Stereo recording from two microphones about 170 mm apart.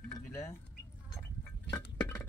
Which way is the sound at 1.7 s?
10° left (ahead or behind).